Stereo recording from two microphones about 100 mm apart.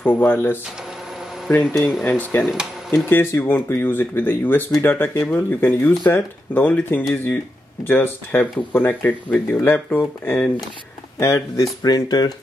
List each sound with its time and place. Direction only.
0.0 s speech: 20° left (ahead or behind)
1.8 s speech: 5° left (ahead or behind)
3.1 s speech: 25° left (ahead or behind)
11.1 s speech: 30° left (ahead or behind)
11.8 s speech: 45° left (ahead or behind)